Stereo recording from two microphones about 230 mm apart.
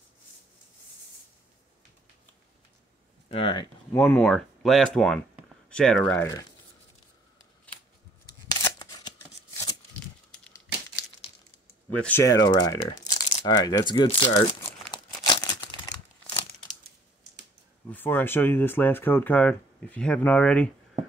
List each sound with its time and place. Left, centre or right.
3.3 s speech: left
3.9 s speech: centre
8.6 s shuffling cards: centre
11.9 s speech: centre
15.2 s crumpling: centre
17.9 s speech: centre